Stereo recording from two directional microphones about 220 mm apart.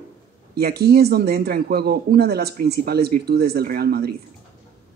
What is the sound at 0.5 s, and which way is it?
Speech, 45° right (ahead or behind).